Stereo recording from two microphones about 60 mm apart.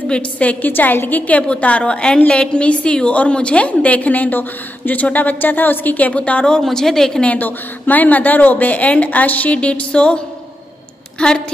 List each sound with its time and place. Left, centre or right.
0.1 s a woman's voice: left; by 7.2 s centre
7.2 s a woman's voice: left; by 11.4 s centre